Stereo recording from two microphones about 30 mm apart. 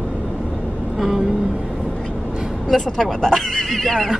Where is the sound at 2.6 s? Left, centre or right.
Centre.